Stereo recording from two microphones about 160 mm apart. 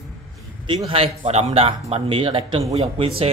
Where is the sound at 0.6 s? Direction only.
35° right (ahead or behind).